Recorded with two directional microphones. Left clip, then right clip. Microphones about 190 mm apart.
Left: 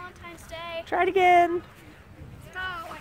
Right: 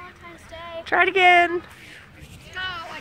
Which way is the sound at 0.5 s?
20° left (ahead or behind).